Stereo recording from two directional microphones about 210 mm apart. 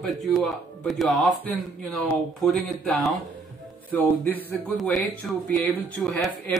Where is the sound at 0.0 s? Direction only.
Centre (ahead or behind).